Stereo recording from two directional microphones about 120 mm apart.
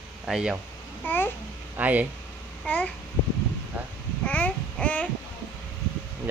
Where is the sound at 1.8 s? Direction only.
15° right (ahead or behind).